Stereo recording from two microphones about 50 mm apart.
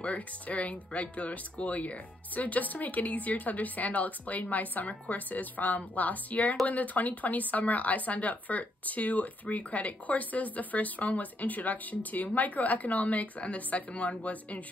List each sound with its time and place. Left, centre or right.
0.0 s speech: left
6.4 s speech: centre
6.7 s speech: left